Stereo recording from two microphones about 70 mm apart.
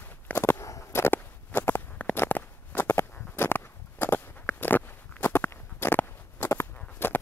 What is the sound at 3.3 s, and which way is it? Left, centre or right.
Biting, left.